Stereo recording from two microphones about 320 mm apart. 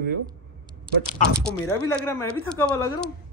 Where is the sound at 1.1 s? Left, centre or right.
Centre.